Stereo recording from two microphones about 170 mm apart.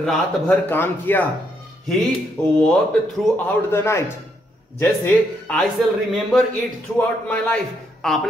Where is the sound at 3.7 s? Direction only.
15° left (ahead or behind).